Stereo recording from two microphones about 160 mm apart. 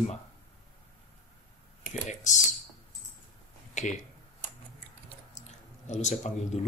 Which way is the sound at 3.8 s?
50° left (ahead or behind).